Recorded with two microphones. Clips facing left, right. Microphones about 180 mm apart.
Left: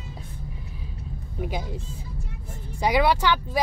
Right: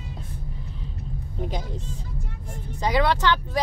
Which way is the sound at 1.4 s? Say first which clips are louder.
Left 1 dB; 10° left (ahead or behind).